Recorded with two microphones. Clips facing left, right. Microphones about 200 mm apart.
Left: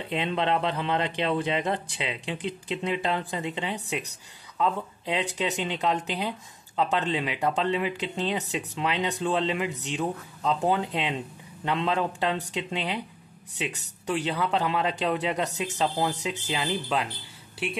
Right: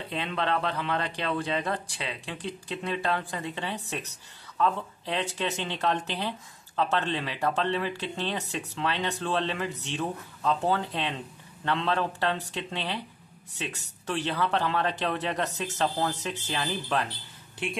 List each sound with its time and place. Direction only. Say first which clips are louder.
0.1 s speech: left 3 dB; 20° left (ahead or behind)